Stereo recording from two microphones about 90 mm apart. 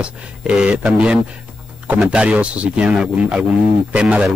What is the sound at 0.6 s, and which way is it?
A man's voice, 10° right (ahead or behind).